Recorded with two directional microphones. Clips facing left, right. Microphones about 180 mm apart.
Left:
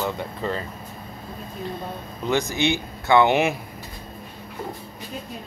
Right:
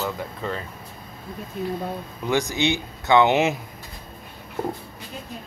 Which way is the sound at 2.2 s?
15° right (ahead or behind).